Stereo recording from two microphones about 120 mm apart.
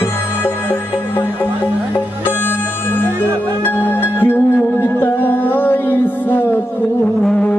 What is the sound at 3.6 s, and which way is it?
Music, 15° left (ahead or behind).